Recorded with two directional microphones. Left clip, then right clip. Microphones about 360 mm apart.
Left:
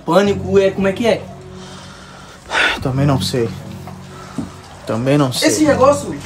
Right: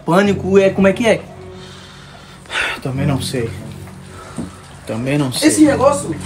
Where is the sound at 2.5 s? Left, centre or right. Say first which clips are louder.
Left 4 dB; centre.